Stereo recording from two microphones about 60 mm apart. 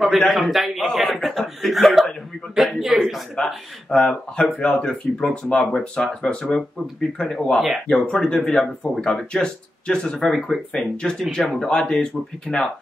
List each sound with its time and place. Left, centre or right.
0.3 s speech: centre
3.3 s speech: centre